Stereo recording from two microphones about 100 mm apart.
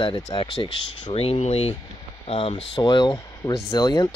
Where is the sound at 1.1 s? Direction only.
90° left.